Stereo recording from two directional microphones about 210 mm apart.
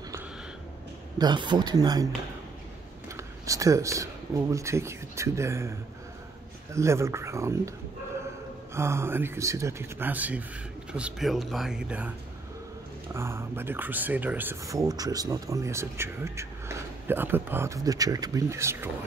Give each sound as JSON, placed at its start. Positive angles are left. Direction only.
{"t": 1.1, "sound": "speech", "side_deg": -20}
{"t": 3.2, "sound": "speech", "side_deg": -15}
{"t": 8.7, "sound": "speech", "side_deg": -10}
{"t": 13.1, "sound": "speech", "side_deg": -10}